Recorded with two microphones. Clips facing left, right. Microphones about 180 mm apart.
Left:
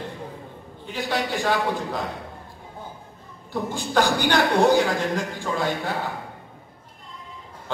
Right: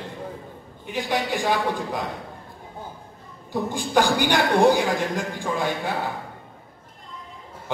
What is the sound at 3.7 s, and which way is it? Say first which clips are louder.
A man's voice: right 1 dB; 15° right (ahead or behind).